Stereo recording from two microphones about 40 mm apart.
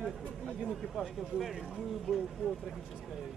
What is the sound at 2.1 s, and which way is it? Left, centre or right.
Speech, right.